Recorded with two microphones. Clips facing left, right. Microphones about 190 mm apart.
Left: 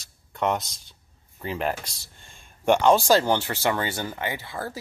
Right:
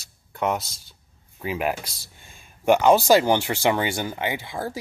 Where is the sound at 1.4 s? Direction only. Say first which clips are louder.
Right 2 dB; 10° right (ahead or behind).